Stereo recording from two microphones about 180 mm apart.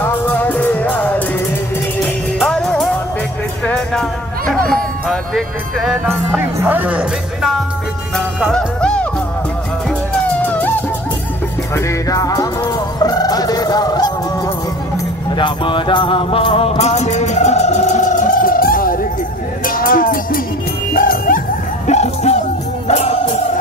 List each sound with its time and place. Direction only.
0.0 s music: 10° left (ahead or behind)
2.3 s music: 5° left (ahead or behind)
4.6 s speech: centre (ahead or behind)
8.4 s music: 5° left (ahead or behind)
11.7 s music: 20° left (ahead or behind); by 21.4 s 50° left (ahead or behind)
21.8 s music: 40° left (ahead or behind)